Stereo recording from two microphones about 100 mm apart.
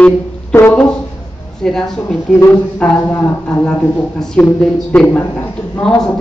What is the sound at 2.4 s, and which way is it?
A man's voice, 20° left (ahead or behind).